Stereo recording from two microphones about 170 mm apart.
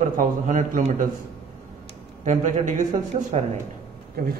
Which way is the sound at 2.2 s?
45° right (ahead or behind).